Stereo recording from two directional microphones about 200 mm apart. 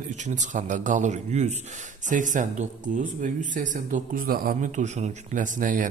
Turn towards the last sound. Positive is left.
turn(degrees=-40)  # may be behind; listen again after turning